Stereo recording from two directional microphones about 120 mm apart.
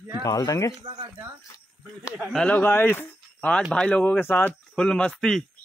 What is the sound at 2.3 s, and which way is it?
Speech, 10° left (ahead or behind).